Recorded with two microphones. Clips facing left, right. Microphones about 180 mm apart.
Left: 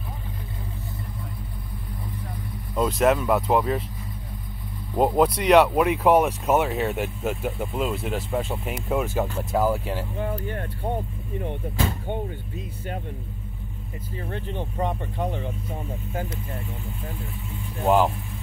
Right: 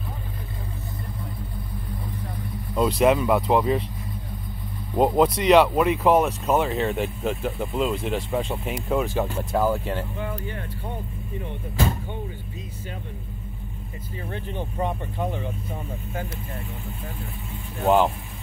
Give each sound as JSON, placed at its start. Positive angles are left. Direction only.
{"t": 3.0, "sound": "speech", "side_deg": 0}
{"t": 4.9, "sound": "speech", "side_deg": 5}
{"t": 10.1, "sound": "speech", "side_deg": 45}
{"t": 15.1, "sound": "speech", "side_deg": -5}
{"t": 17.8, "sound": "speech", "side_deg": 0}